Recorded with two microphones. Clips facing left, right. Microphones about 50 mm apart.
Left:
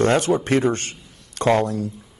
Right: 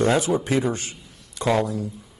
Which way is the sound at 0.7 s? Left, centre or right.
Left.